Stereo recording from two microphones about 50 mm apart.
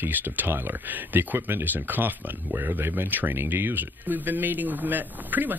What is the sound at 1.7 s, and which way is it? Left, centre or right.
Speech, right.